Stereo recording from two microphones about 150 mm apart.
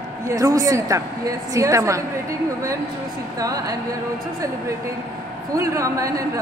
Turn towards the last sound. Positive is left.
turn(degrees=-20)  # may be behind; listen again after turning